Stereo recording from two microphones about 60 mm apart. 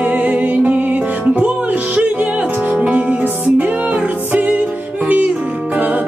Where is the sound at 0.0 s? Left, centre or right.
Right.